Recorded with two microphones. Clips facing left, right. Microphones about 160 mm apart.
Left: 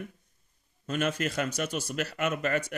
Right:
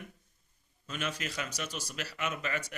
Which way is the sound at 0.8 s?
50° left (ahead or behind).